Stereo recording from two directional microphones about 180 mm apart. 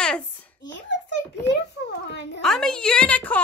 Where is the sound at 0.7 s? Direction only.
80° left.